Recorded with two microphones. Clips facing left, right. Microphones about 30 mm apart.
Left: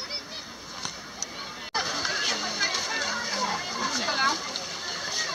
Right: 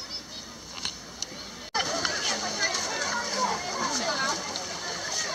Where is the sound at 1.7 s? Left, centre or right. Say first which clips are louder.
Right 1 dB; centre.